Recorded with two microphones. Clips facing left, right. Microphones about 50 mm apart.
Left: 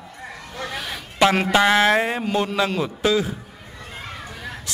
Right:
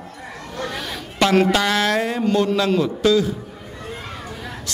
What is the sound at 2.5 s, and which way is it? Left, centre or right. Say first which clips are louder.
Speech: right 3 dB; centre.